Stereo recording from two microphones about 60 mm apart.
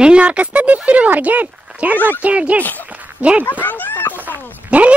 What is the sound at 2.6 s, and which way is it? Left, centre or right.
Speech, left.